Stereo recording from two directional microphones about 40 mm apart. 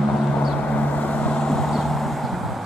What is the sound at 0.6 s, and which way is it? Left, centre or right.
Vehicle, left.